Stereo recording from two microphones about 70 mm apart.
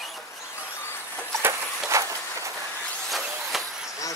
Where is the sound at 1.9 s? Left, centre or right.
Right.